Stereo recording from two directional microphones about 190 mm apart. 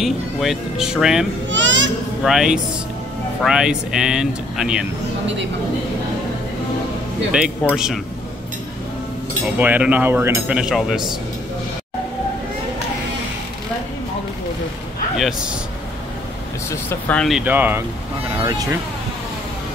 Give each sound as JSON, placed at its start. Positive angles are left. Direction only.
{"t": 0.0, "sound": "speech", "side_deg": 0}
{"t": 1.5, "sound": "a child's voice", "side_deg": -75}
{"t": 2.2, "sound": "speech", "side_deg": -5}
{"t": 7.7, "sound": "speech", "side_deg": -5}
{"t": 9.6, "sound": "speech", "side_deg": -10}
{"t": 15.1, "sound": "speech", "side_deg": 0}
{"t": 16.7, "sound": "speech", "side_deg": 10}